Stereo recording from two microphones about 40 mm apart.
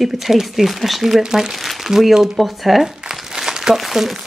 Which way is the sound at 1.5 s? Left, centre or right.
Centre.